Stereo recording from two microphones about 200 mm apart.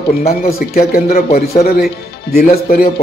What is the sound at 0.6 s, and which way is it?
Speech, 50° left (ahead or behind).